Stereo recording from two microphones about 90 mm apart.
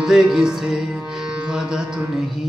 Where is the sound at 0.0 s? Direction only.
5° right (ahead or behind).